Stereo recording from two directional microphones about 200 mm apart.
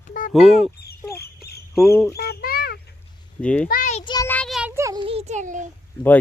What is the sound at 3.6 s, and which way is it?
Speech, 45° left (ahead or behind).